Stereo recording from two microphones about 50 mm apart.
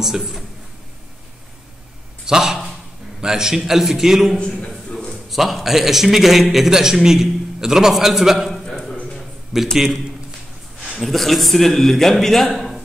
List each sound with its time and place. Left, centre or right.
0.0 s a man's voice: centre
2.2 s a man's voice: centre
4.4 s a man's voice: centre
5.3 s a man's voice: centre
8.6 s a sound: centre
9.5 s a man's voice: centre
11.0 s speech: centre
12.5 s a sound: centre